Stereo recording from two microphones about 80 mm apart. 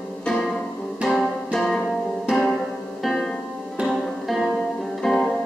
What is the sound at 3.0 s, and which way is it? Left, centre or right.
Music, centre.